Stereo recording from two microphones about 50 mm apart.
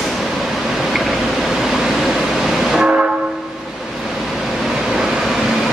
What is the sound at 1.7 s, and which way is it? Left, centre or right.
Train, centre.